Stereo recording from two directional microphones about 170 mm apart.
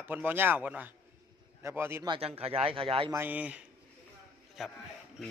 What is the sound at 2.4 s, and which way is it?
Speech, 35° right (ahead or behind).